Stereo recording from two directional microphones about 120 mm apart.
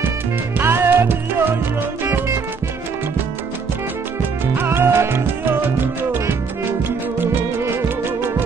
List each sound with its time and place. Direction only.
0.6 s music: 15° right (ahead or behind)
4.6 s music: 20° right (ahead or behind)